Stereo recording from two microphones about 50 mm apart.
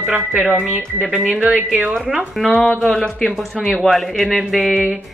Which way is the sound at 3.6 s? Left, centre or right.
Centre.